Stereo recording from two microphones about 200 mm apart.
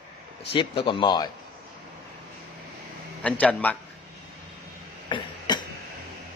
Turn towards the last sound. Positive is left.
turn(degrees=20)  # may be behind; listen again after turning